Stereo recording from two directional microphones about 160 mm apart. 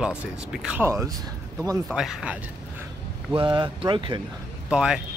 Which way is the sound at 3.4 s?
30° right (ahead or behind).